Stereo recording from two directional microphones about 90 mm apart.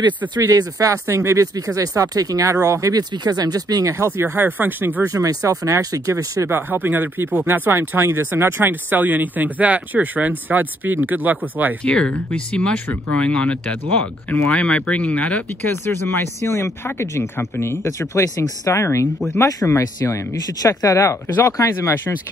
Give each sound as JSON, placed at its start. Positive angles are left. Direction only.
{"t": 0.4, "sound": "speech", "side_deg": -40}
{"t": 4.4, "sound": "speech", "side_deg": -20}
{"t": 5.0, "sound": "speech", "side_deg": -40}
{"t": 6.5, "sound": "speech", "side_deg": -20}
{"t": 11.8, "sound": "speech", "side_deg": 10}
{"t": 16.1, "sound": "speech", "side_deg": 30}